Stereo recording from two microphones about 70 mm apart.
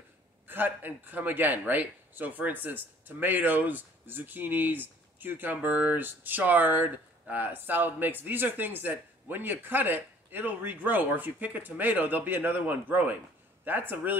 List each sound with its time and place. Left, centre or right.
0.5 s a man's voice: right